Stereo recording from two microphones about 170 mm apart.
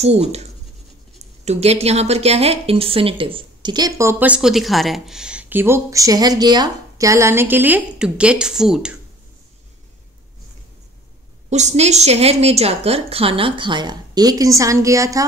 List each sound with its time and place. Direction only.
0.0 s a woman's voice: 40° right (ahead or behind); by 8.9 s 5° right (ahead or behind)
11.5 s a woman's voice: 40° right (ahead or behind); by 15.2 s 20° right (ahead or behind)